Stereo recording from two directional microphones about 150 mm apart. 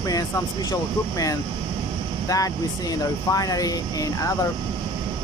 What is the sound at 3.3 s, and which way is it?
Speech, 25° left (ahead or behind).